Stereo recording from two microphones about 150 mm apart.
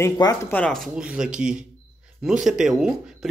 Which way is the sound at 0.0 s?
20° left (ahead or behind).